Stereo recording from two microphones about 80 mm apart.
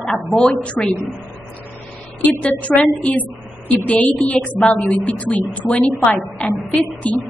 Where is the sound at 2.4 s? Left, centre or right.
Centre.